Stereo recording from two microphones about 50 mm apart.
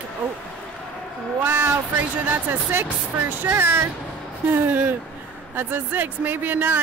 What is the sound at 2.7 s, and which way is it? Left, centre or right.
Speech, right.